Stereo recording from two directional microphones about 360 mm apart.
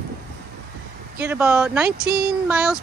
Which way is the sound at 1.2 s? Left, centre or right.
Centre.